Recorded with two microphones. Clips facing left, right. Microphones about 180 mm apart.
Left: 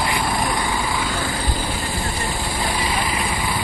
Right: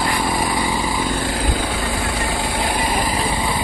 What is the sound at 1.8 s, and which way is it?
Vehicle, 90° right.